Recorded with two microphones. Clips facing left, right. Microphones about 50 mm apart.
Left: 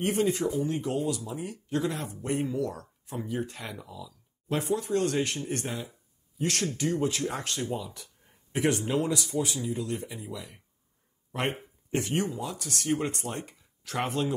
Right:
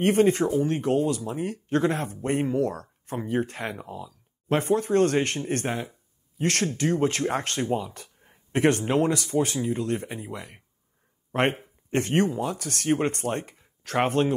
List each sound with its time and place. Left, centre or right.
0.0 s speech: right